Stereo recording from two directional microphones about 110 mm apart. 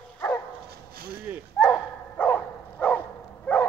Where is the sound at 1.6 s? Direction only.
15° left (ahead or behind).